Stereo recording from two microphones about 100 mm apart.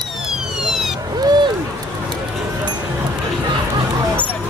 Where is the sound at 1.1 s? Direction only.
45° right (ahead or behind).